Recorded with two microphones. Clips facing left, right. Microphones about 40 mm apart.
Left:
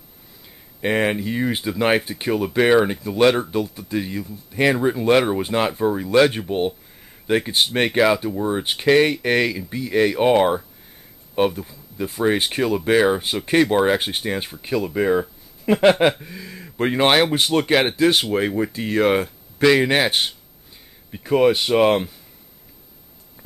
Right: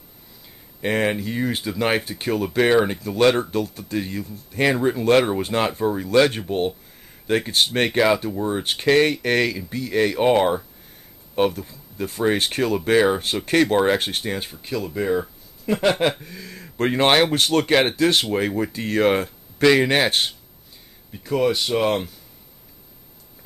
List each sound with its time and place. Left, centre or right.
0.7 s speech: centre
21.1 s speech: left